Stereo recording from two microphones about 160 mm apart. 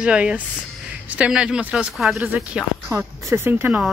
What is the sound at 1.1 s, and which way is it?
Speech, 5° right (ahead or behind).